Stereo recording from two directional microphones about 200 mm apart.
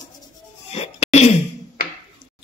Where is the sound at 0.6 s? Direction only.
30° left (ahead or behind).